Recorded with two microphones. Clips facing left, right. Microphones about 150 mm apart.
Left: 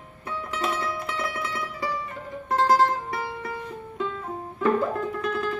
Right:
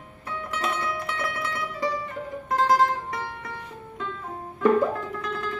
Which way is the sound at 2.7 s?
5° left (ahead or behind).